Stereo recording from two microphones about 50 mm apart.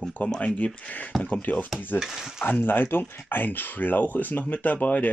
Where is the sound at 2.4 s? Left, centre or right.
Left.